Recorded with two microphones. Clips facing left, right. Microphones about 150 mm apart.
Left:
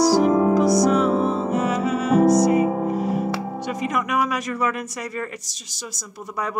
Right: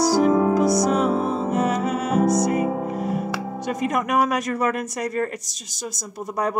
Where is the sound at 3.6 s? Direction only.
50° right (ahead or behind).